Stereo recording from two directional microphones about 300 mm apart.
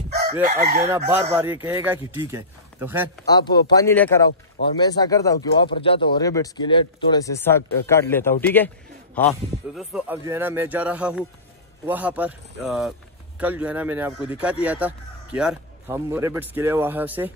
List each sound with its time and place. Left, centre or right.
0.5 s chicken: right
0.8 s speech: centre
3.3 s speech: centre